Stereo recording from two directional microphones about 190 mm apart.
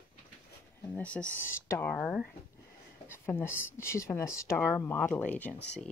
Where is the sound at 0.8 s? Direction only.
10° left (ahead or behind).